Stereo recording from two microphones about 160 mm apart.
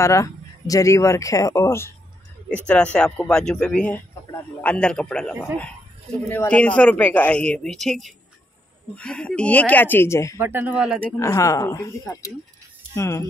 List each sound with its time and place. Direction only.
0.0 s speech: 20° left (ahead or behind)
10.3 s speech: 15° right (ahead or behind)
11.1 s speech: 20° left (ahead or behind)